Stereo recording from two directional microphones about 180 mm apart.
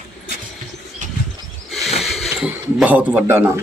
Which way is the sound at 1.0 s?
45° right (ahead or behind).